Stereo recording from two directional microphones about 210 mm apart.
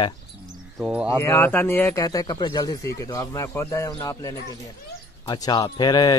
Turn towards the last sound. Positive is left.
turn(degrees=20)  # may be behind; listen again after turning